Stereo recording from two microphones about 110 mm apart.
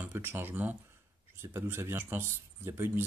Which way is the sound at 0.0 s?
20° right (ahead or behind).